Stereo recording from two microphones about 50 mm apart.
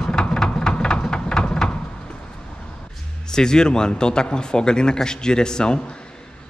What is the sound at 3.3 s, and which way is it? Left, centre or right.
A man's voice, centre.